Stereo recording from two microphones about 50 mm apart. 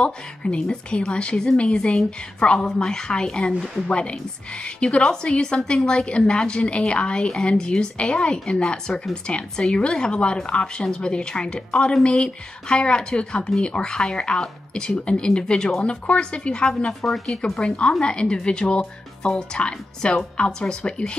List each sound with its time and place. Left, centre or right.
0.0 s speech: centre
2.5 s a woman's voice: centre
16.6 s a woman's voice: centre
17.6 s speech: centre